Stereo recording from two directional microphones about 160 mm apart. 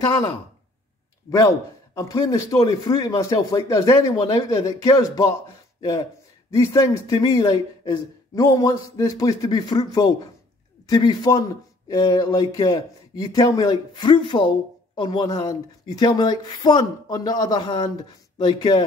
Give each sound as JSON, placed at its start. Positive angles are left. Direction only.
{"t": 2.0, "sound": "a woman's voice", "side_deg": 20}